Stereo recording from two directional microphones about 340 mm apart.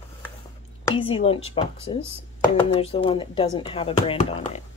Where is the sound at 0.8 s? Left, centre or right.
Centre.